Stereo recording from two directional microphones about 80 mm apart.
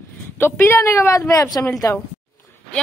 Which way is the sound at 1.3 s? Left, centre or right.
Left.